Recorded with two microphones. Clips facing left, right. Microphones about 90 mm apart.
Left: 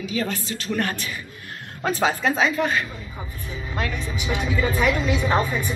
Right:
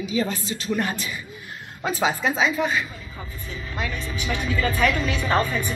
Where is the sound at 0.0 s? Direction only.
20° right (ahead or behind).